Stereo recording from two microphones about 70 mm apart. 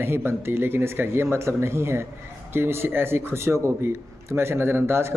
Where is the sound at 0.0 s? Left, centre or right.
Right.